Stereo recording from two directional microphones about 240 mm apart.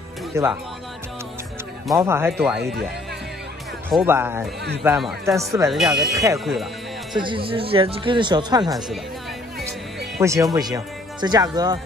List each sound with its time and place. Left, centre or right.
0.3 s speech: centre
2.0 s speech: centre
3.9 s speech: centre
5.7 s speech: centre
6.1 s speech: centre
6.4 s speech: centre
7.2 s speech: right
10.2 s speech: centre